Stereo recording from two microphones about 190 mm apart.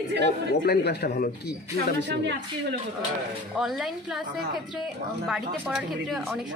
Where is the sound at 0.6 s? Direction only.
60° left (ahead or behind).